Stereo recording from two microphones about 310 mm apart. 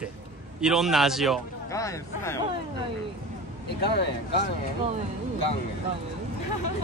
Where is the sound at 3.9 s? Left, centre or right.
Left.